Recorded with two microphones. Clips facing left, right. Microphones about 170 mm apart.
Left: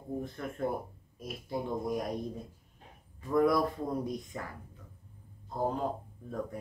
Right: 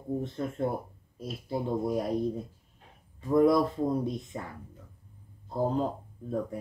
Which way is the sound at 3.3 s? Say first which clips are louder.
Right 4 dB; 25° right (ahead or behind).